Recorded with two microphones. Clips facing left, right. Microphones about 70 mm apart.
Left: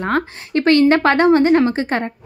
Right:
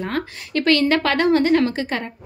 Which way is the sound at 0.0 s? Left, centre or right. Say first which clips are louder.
Left 6 dB; left.